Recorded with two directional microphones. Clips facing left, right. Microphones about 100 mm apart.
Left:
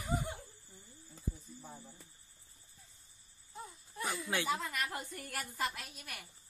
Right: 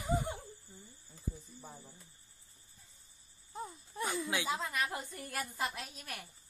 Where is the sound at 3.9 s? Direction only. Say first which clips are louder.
Right 1 dB; 25° right (ahead or behind).